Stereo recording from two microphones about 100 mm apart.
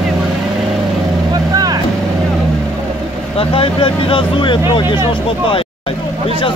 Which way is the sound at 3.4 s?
65° left (ahead or behind).